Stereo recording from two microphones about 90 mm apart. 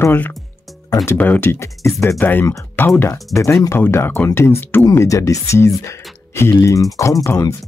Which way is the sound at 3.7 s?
25° left (ahead or behind).